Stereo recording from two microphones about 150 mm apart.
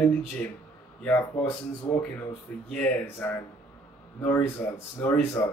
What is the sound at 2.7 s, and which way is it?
Speech, 10° left (ahead or behind).